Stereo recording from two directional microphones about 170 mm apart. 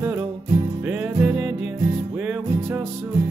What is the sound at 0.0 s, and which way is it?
Music, 10° right (ahead or behind).